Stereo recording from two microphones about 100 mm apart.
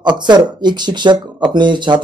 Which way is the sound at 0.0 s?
45° right (ahead or behind).